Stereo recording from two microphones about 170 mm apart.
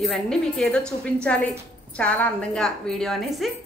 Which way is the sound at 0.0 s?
Centre (ahead or behind).